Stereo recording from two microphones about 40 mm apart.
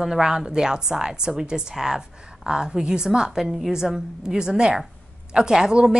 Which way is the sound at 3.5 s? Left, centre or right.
Centre.